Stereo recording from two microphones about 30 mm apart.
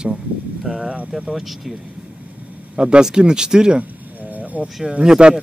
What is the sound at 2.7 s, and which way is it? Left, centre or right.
Speech, right.